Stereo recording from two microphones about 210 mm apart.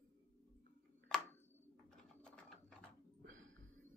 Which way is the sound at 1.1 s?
5° left (ahead or behind).